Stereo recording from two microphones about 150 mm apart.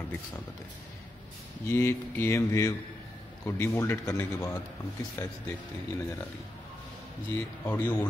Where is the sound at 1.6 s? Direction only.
15° left (ahead or behind).